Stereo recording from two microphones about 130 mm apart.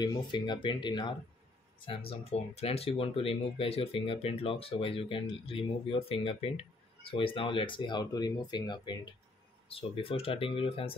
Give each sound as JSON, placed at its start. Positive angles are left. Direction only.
{"t": 0.0, "sound": "speech", "side_deg": 35}
{"t": 9.7, "sound": "speech", "side_deg": 45}